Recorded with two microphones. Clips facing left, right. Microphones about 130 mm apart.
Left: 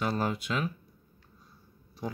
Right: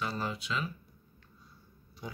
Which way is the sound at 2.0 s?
40° left (ahead or behind).